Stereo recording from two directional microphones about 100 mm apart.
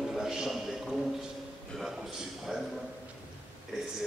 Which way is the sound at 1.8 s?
Centre (ahead or behind).